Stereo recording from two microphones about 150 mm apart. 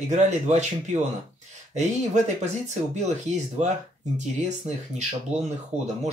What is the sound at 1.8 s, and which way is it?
Speech, 50° right (ahead or behind).